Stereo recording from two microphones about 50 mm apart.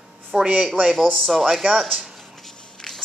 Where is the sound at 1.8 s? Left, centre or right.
Centre.